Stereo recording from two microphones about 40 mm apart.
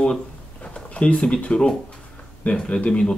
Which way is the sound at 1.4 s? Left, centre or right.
Left.